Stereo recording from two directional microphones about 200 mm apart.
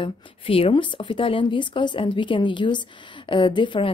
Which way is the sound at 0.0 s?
25° left (ahead or behind).